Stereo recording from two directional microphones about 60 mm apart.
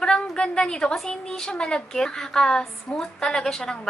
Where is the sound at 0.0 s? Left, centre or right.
Centre.